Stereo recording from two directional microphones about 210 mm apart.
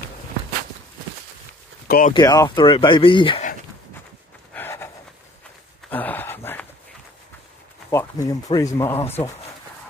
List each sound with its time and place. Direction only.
1.9 s speech: 40° left (ahead or behind)
2.1 s speech: 15° left (ahead or behind)
4.6 s pant: 10° left (ahead or behind)
5.9 s a sound: 10° left (ahead or behind)
7.9 s speech: 15° left (ahead or behind)